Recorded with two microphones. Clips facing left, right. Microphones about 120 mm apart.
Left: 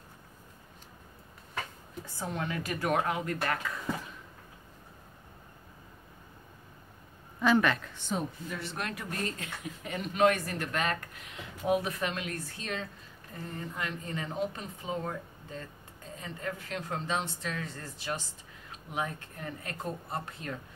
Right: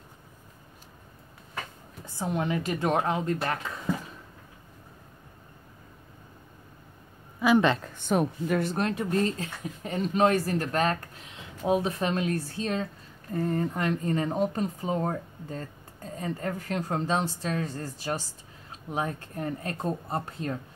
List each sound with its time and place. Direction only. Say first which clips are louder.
2.1 s speech: right 6 dB; 20° right (ahead or behind)
7.3 s a sound: right 3 dB; 10° right (ahead or behind)
7.6 s speech: right 5 dB; 25° right (ahead or behind)
7.9 s a woman's voice: right 8 dB; 55° right (ahead or behind)
8.6 s speech: right 9 dB; 35° right (ahead or behind)
13.3 s speech: right 12 dB; 50° right (ahead or behind)